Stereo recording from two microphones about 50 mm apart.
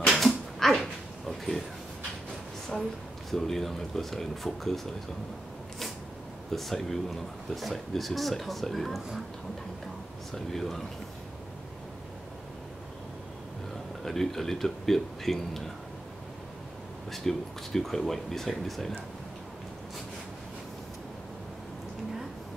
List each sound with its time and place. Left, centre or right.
0.3 s dog: centre
3.3 s speech: centre
6.5 s speech: centre
10.3 s speech: centre
14.0 s speech: centre
17.1 s speech: centre